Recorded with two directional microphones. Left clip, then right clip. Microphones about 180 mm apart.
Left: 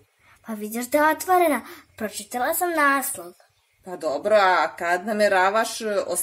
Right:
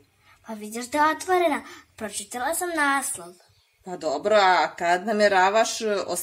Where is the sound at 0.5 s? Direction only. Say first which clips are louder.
Left 6 dB; 65° left (ahead or behind); by 3.0 s 45° left (ahead or behind).